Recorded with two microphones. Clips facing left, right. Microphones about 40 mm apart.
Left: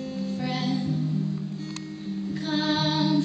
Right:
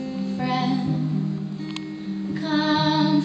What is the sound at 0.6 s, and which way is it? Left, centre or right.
Music, right.